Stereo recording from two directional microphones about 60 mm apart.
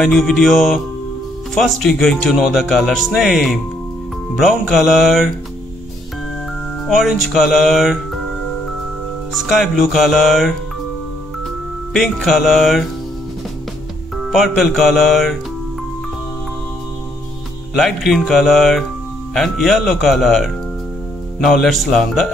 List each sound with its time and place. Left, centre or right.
0.0 s speech: centre
6.9 s speech: centre
9.3 s speech: centre
11.9 s speech: centre
14.1 s speech: centre
17.7 s speech: centre